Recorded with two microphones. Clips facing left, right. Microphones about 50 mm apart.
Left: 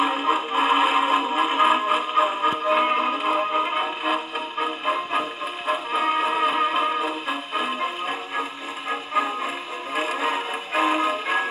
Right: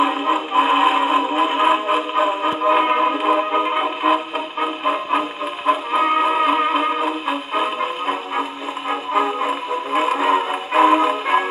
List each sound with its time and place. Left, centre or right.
0.0 s music: centre
9.9 s music: right